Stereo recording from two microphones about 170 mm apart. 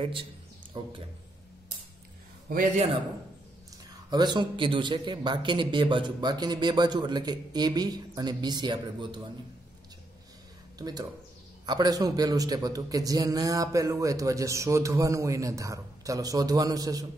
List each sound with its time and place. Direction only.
0.0 s a man's voice: 30° right (ahead or behind)
2.5 s a man's voice: 45° right (ahead or behind)
4.1 s a man's voice: 25° right (ahead or behind)
10.8 s a man's voice: 25° right (ahead or behind)